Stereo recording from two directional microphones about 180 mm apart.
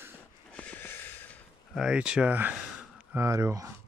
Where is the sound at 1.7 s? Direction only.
5° right (ahead or behind).